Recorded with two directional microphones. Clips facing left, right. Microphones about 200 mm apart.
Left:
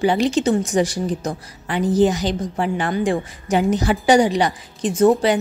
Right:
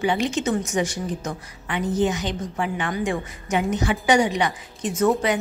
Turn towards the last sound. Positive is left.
turn(degrees=35)  # may be behind; listen again after turning